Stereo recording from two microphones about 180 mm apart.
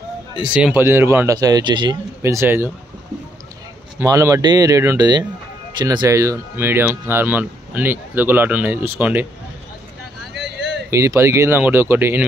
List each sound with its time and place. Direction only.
0.4 s speech: 5° right (ahead or behind)
4.0 s speech: 15° right (ahead or behind)
10.9 s speech: 15° right (ahead or behind)